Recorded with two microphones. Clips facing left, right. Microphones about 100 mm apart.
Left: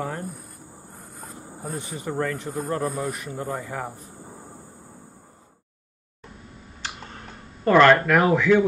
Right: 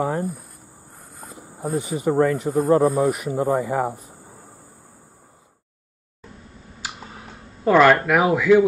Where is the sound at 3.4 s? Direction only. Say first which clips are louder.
Right 10 dB; 30° right (ahead or behind).